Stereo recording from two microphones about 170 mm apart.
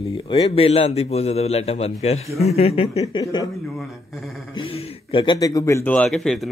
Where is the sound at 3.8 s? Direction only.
Centre (ahead or behind).